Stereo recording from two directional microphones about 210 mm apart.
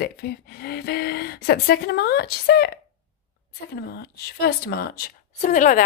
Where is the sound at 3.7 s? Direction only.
50° left (ahead or behind).